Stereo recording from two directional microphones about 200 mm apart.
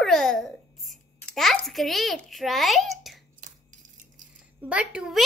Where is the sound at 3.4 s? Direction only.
40° right (ahead or behind).